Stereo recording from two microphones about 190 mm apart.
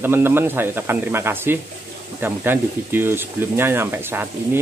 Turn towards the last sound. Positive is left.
turn(degrees=-10)  # may be behind; listen again after turning